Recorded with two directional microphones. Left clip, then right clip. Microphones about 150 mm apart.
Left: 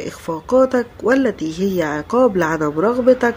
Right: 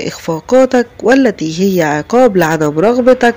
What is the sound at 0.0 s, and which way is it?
Speech, 30° right (ahead or behind).